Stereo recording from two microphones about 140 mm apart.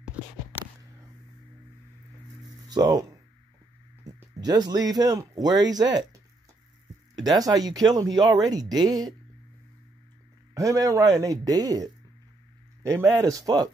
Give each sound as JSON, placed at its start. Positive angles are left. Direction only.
{"t": 0.0, "sound": "a sound", "side_deg": -10}
{"t": 2.7, "sound": "speech", "side_deg": -25}
{"t": 4.4, "sound": "speech", "side_deg": -25}
{"t": 7.2, "sound": "speech", "side_deg": -25}
{"t": 10.5, "sound": "speech", "side_deg": -25}